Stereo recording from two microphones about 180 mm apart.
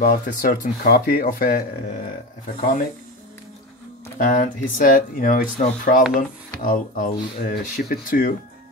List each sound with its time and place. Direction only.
0.0 s speech: 55° left (ahead or behind)
4.2 s speech: 45° left (ahead or behind)